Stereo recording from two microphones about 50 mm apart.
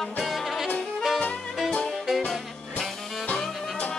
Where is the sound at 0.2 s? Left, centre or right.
Centre.